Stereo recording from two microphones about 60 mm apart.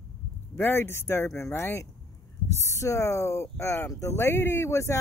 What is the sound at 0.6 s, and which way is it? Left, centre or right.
Speech, left.